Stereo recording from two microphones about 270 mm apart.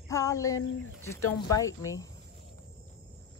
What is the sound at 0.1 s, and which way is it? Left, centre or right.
Speech, centre.